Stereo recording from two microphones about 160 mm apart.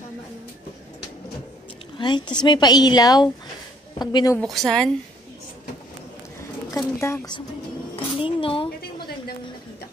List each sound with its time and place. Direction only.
2.0 s a woman's voice: 30° left (ahead or behind)
4.4 s a woman's voice: centre (ahead or behind)
7.0 s a woman's voice: 15° left (ahead or behind)
7.9 s a sound: 35° left (ahead or behind)